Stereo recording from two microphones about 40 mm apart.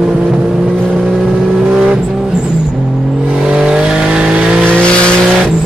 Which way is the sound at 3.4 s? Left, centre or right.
Right.